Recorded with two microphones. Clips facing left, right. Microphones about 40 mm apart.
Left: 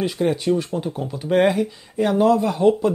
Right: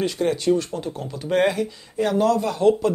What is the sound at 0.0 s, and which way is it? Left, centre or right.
Speech, centre.